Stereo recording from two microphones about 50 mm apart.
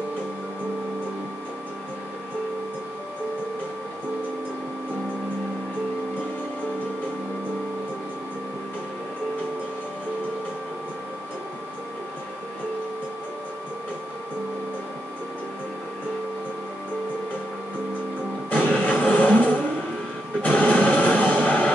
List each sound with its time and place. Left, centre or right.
18.5 s music: left